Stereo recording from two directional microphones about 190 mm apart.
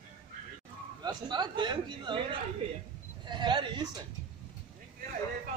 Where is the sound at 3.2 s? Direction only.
25° right (ahead or behind).